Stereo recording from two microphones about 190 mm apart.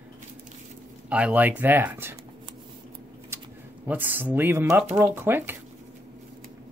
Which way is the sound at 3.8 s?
10° right (ahead or behind).